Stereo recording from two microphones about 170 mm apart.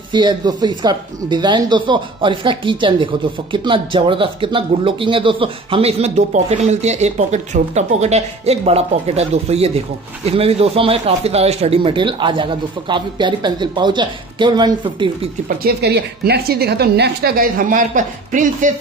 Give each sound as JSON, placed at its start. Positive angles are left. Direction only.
{"t": 0.1, "sound": "speech", "side_deg": -25}
{"t": 15.4, "sound": "a woman's voice", "side_deg": -70}